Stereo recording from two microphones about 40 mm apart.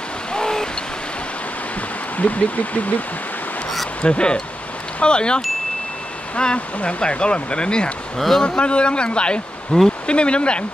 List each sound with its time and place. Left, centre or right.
0.3 s vehicle: centre
2.1 s speech: left
4.0 s speech: left
8.2 s speech: centre
8.5 s speech: left